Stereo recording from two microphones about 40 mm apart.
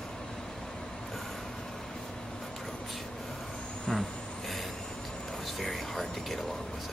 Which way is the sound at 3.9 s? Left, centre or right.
Centre.